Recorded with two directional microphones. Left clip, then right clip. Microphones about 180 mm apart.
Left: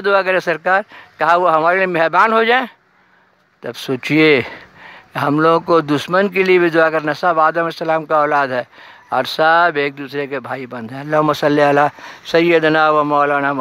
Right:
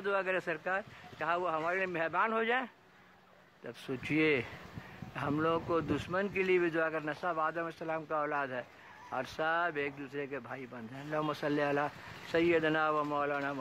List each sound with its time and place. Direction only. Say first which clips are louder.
0.0 s a man's voice: left 19 dB; 45° left (ahead or behind)